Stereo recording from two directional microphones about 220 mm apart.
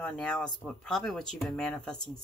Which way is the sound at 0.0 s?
5° left (ahead or behind).